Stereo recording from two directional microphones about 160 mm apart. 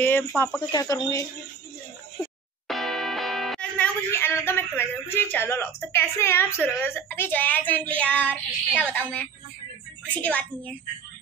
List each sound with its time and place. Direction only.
0.0 s speech: 10° left (ahead or behind)
0.6 s speech: 25° left (ahead or behind)
2.7 s music: centre (ahead or behind)
5.0 s a woman's voice: 15° left (ahead or behind)
10.1 s a woman's voice: 10° left (ahead or behind)